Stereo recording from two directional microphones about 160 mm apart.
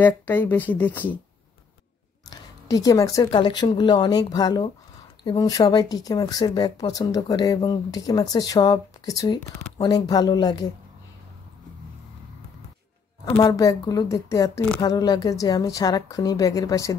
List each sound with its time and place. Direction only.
0.0 s speech: 10° left (ahead or behind)
2.2 s speech: 20° left (ahead or behind)
13.2 s speech: 20° left (ahead or behind)